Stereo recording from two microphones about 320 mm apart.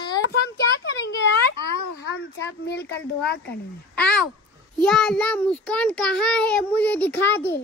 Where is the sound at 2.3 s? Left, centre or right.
Left.